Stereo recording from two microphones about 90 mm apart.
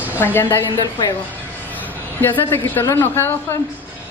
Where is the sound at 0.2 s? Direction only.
25° left (ahead or behind).